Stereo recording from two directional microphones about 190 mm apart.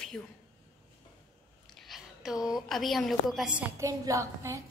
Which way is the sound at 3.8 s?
15° right (ahead or behind).